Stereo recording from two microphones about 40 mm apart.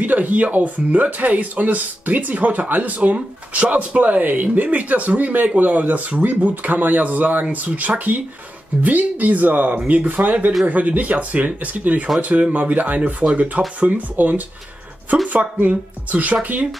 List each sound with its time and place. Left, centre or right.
0.0 s speech: right